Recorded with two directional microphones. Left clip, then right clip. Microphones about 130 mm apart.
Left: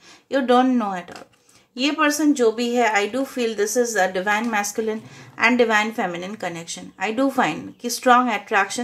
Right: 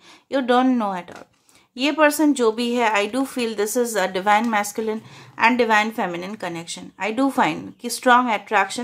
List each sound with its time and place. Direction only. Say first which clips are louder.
0.3 s a woman's voice: left 1 dB; 30° right (ahead or behind); by 4.6 s 50° right (ahead or behind)
5.4 s a woman's voice: right 1 dB; 35° right (ahead or behind)